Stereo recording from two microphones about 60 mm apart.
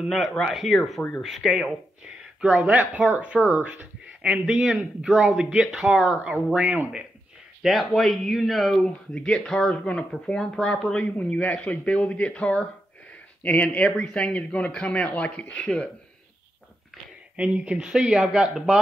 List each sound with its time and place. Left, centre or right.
0.4 s speech: centre
2.4 s speech: right
4.2 s speech: centre
7.6 s speech: centre
8.7 s speech: centre
11.0 s speech: left
17.4 s speech: centre